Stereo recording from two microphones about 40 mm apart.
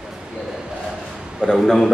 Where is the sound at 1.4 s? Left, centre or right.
Centre.